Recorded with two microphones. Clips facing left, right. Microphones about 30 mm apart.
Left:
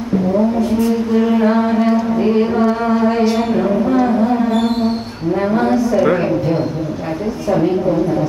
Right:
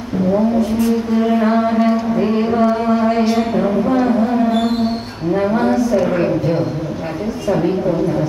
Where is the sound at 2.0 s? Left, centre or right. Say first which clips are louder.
Left 1 dB; centre.